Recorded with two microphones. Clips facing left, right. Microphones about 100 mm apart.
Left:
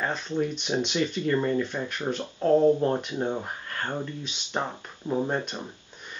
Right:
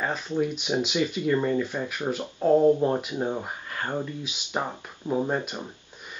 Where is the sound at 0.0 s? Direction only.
5° right (ahead or behind).